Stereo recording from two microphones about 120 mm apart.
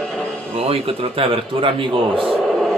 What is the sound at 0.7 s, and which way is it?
A man's voice, 50° right (ahead or behind).